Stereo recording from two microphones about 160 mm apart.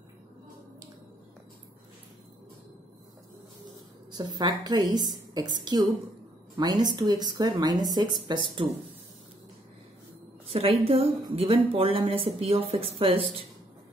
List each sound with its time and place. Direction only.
4.1 s a woman's voice: 25° right (ahead or behind)
10.5 s speech: 35° right (ahead or behind)